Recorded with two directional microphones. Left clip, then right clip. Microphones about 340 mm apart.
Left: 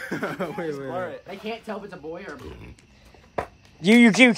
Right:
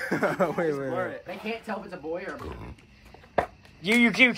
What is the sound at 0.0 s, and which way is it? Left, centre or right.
Speech, centre.